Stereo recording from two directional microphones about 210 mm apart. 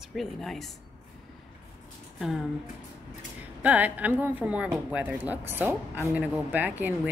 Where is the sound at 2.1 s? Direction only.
Centre (ahead or behind).